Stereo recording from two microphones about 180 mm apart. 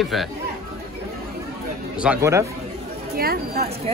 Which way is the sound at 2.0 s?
10° right (ahead or behind).